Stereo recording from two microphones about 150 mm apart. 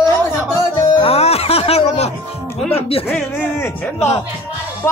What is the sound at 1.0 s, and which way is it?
Music, 40° left (ahead or behind).